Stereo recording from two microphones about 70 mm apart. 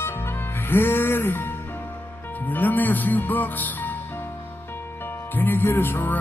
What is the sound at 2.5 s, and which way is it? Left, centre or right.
Speech, left.